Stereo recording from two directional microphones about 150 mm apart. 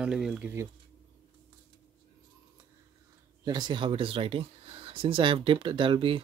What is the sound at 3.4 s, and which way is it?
Speech, 30° right (ahead or behind).